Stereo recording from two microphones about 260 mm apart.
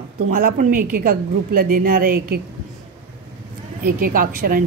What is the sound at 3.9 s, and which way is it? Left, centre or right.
Speech, right.